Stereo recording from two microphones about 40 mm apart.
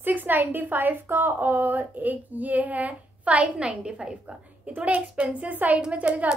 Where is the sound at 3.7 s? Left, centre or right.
Right.